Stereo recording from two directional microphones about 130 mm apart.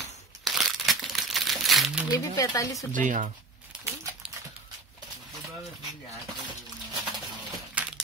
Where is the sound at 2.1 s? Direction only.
25° left (ahead or behind).